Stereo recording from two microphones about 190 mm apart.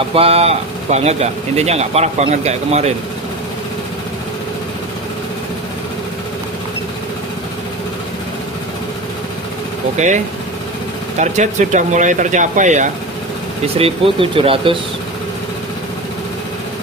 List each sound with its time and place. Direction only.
0.1 s speech: 30° right (ahead or behind)
9.9 s speech: 40° right (ahead or behind)
13.7 s speech: 30° right (ahead or behind)